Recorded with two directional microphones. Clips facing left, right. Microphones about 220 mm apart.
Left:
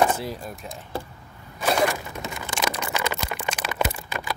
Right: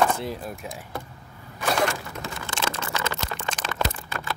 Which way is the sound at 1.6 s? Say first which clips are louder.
Left 2 dB; 15° left (ahead or behind).